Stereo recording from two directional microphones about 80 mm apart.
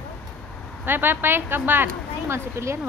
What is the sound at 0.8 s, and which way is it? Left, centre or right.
Speech, right.